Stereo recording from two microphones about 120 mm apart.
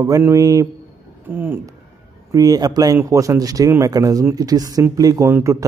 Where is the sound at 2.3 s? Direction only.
30° right (ahead or behind).